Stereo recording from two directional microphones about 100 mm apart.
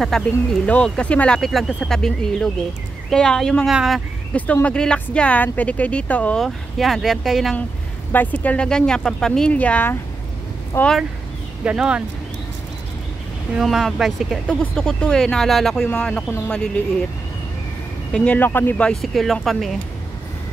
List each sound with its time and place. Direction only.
0.0 s speech: 5° left (ahead or behind)
4.3 s speech: 15° left (ahead or behind)
6.4 s speech: centre (ahead or behind)
8.1 s speech: 15° left (ahead or behind)
10.7 s speech: 25° left (ahead or behind)
11.6 s speech: 10° right (ahead or behind)
13.6 s speech: centre (ahead or behind)
18.1 s speech: 15° left (ahead or behind)
18.9 s speech: centre (ahead or behind)